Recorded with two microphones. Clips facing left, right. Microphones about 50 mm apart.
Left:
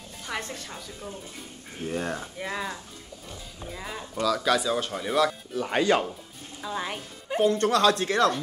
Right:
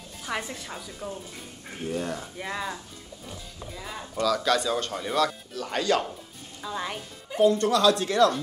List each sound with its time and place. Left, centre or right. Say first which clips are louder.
0.3 s a woman's voice: right 2 dB; centre
2.0 s speech: left 1 dB; left
2.3 s speech: even; centre
5.6 s speech: left 2 dB; left
6.6 s speech: left 1 dB; centre
7.2 s speech: right 1 dB; left